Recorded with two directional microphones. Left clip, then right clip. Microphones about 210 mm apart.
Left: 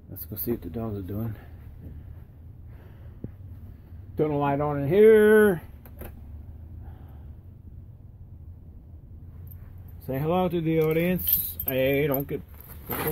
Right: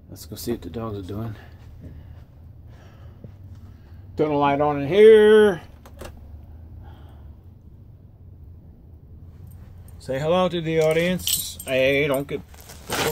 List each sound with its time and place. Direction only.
0.1 s speech: 10° left (ahead or behind)
4.2 s speech: 15° left (ahead or behind)
10.0 s speech: 25° left (ahead or behind)
12.6 s zipper: 25° right (ahead or behind)